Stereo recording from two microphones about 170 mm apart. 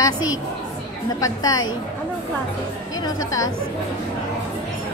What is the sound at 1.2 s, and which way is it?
Speech, 20° left (ahead or behind).